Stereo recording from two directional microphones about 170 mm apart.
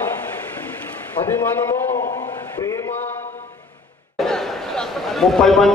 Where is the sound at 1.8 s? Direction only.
50° left (ahead or behind).